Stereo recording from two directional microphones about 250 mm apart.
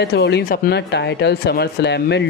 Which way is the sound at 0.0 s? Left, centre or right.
Left.